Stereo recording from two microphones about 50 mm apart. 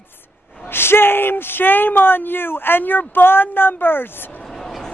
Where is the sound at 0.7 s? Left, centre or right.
Left.